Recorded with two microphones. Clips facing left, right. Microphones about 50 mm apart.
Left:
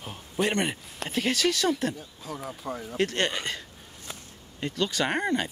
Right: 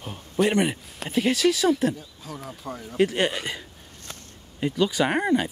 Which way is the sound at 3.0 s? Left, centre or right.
Centre.